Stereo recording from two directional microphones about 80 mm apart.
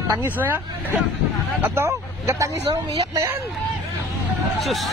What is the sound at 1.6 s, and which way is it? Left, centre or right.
Speech, right.